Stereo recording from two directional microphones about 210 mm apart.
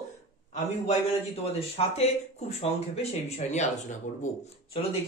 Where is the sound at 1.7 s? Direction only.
30° left (ahead or behind).